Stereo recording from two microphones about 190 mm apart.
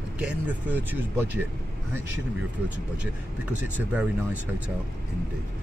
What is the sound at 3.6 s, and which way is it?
Speech, 10° right (ahead or behind).